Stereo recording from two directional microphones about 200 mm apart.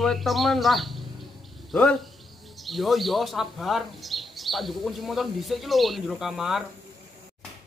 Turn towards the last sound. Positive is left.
turn(degrees=0)  # may be behind; listen again after turning